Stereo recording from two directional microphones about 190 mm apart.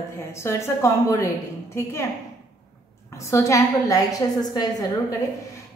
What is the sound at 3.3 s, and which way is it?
A woman's voice, 15° left (ahead or behind).